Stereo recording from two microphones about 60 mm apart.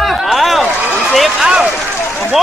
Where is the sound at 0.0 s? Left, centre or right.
Centre.